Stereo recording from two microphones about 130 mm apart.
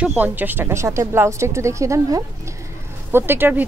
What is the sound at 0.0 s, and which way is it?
A woman's voice, 15° right (ahead or behind).